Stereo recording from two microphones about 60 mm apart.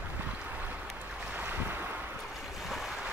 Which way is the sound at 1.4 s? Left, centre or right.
Right.